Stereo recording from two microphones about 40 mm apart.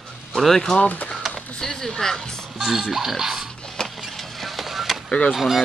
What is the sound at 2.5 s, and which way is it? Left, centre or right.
Oink, centre.